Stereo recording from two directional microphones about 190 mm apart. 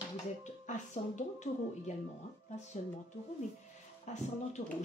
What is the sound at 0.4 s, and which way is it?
Speech, 40° left (ahead or behind).